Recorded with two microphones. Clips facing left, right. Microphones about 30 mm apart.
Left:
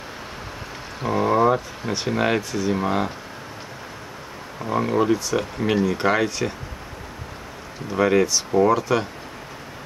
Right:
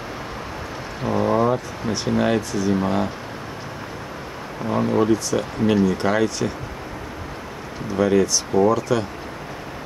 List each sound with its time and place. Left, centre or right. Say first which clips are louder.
1.0 s speech: left 1 dB; centre
4.9 s speech: right 1 dB; centre
7.9 s speech: even; centre